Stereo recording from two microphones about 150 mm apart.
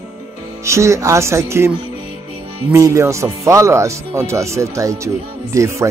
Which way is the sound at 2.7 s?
20° right (ahead or behind).